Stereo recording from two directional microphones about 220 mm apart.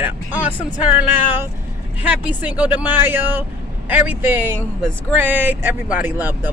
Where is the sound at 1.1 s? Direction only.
10° right (ahead or behind).